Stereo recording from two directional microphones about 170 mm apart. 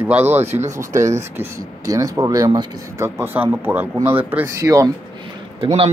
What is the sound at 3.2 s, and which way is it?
Speech, 10° right (ahead or behind).